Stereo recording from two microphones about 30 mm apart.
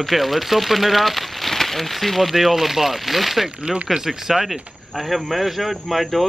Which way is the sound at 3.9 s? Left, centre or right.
Centre.